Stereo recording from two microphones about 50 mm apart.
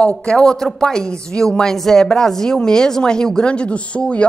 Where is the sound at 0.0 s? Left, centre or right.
Centre.